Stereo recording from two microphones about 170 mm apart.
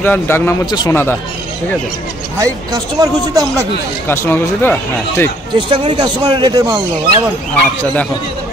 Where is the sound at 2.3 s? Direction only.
20° right (ahead or behind).